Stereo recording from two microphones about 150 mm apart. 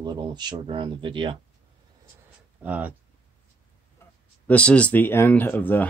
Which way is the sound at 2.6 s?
10° right (ahead or behind).